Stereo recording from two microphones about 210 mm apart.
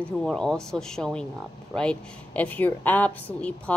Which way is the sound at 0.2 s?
5° left (ahead or behind).